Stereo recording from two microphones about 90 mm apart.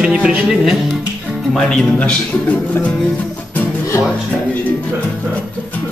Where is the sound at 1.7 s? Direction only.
10° left (ahead or behind).